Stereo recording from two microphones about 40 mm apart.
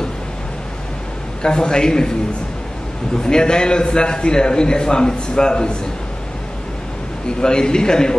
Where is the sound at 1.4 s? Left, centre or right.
Left.